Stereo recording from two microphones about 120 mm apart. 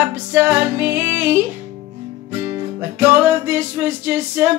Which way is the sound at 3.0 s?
20° right (ahead or behind).